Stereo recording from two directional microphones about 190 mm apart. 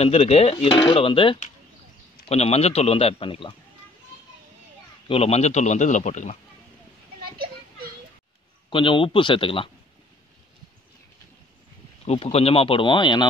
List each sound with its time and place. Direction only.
0.0 s a man's voice: 30° left (ahead or behind)
5.0 s a man's voice: 30° left (ahead or behind)
8.6 s speech: 25° left (ahead or behind)
12.0 s speech: 30° left (ahead or behind)